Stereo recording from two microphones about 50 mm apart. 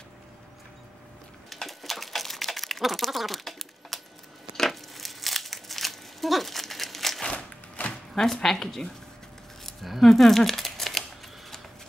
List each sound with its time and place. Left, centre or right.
1.5 s typing: centre
4.6 s crumpling: centre
7.2 s a sound: left
8.1 s speech: centre